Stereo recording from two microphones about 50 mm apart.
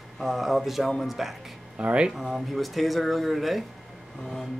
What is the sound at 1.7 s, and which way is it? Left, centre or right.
Speech, right.